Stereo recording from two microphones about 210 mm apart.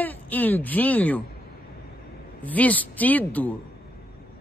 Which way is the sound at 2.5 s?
5° left (ahead or behind).